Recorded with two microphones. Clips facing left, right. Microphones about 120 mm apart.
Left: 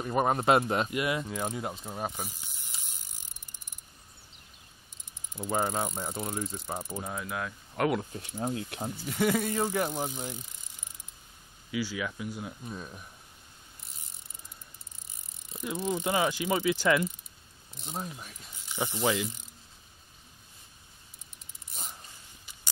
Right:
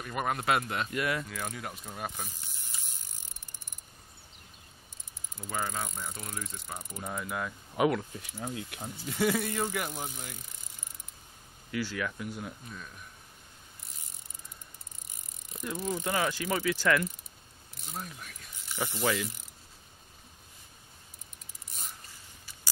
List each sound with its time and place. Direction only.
0.0 s speech: 30° left (ahead or behind)
0.8 s speech: 20° left (ahead or behind)
5.4 s speech: 30° left (ahead or behind)
7.0 s speech: 5° left (ahead or behind)
8.4 s speech: 25° left (ahead or behind)
9.0 s speech: 15° left (ahead or behind)
11.7 s speech: 5° left (ahead or behind)
12.6 s speech: 30° left (ahead or behind)
15.7 s speech: 25° left (ahead or behind)